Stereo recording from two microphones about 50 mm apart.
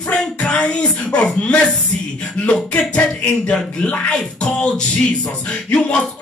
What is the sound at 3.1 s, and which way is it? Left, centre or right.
Music, centre.